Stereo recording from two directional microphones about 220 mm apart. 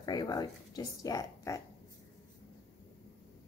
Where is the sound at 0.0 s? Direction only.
20° left (ahead or behind).